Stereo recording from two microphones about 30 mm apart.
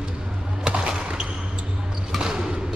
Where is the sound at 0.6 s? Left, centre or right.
Right.